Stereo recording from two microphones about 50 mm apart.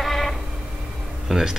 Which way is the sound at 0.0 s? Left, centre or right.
Centre.